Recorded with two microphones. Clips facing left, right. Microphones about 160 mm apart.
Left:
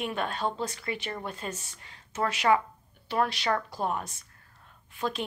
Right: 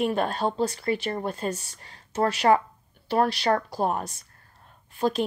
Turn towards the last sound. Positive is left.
turn(degrees=-40)  # may be behind; listen again after turning